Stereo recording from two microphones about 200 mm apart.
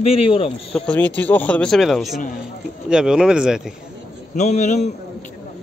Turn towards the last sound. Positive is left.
turn(degrees=35)  # may be behind; listen again after turning